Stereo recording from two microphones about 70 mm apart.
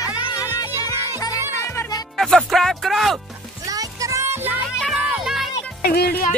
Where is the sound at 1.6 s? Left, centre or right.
Left.